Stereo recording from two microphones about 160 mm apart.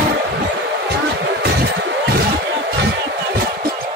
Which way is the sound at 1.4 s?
90° right.